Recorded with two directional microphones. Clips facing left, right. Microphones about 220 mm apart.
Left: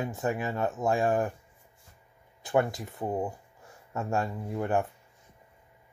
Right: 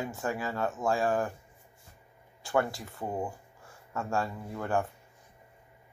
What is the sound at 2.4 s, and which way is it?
Speech, 20° left (ahead or behind).